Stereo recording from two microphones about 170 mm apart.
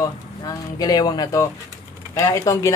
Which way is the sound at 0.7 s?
25° left (ahead or behind).